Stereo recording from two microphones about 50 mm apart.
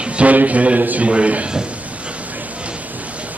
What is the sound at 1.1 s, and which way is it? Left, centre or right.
Speech, right.